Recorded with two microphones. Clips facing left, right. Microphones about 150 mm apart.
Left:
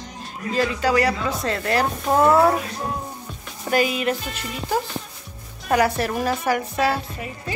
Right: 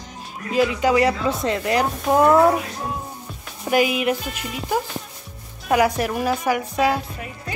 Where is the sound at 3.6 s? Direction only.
15° right (ahead or behind).